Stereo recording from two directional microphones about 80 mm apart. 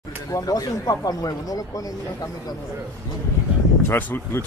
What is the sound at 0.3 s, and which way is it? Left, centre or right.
Speech, left.